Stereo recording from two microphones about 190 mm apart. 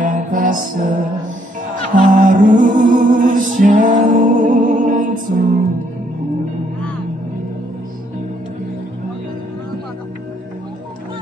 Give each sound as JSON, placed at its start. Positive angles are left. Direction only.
{"t": 0.0, "sound": "music", "side_deg": -45}